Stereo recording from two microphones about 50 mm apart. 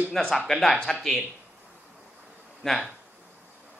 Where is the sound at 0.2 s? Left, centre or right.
Centre.